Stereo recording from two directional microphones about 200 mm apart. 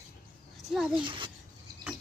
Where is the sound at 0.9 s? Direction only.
25° right (ahead or behind).